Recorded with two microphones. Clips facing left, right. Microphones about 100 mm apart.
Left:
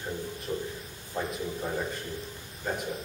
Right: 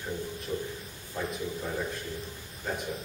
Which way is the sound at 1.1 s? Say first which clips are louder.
Left 2 dB; 25° left (ahead or behind).